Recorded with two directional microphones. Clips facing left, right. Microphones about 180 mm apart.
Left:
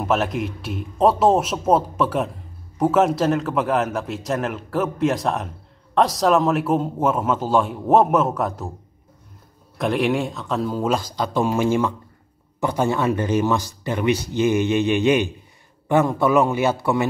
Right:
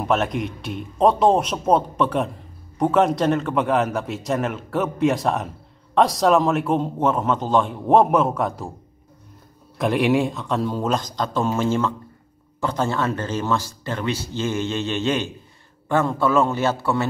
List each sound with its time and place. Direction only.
0.0 s a man's voice: centre (ahead or behind)
9.8 s a man's voice: centre (ahead or behind); by 17.1 s 15° left (ahead or behind)